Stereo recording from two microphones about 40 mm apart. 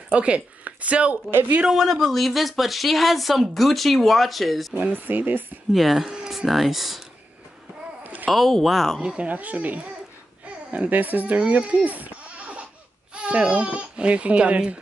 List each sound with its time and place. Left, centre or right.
0.1 s speech: right
1.7 s speech: centre
4.9 s speech: right
5.7 s speech: centre
8.0 s a sound: right
8.3 s speech: centre
9.0 s speech: right
11.3 s speech: right